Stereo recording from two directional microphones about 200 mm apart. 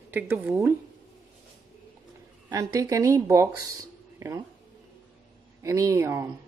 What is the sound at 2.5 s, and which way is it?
Speech, 15° right (ahead or behind).